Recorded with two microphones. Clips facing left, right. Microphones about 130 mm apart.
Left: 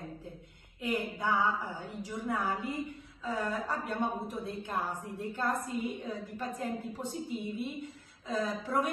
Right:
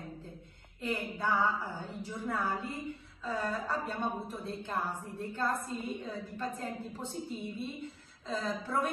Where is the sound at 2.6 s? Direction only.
15° left (ahead or behind).